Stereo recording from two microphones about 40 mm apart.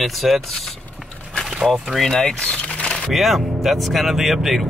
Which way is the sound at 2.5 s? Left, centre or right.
Left.